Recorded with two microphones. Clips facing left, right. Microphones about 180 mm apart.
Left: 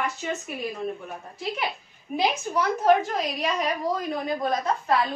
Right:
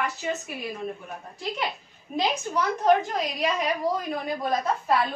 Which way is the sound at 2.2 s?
5° left (ahead or behind).